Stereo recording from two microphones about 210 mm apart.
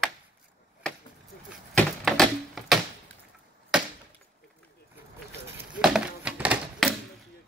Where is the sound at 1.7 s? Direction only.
Centre (ahead or behind).